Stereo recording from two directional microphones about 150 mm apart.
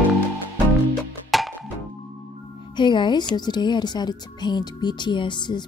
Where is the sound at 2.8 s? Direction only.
30° left (ahead or behind).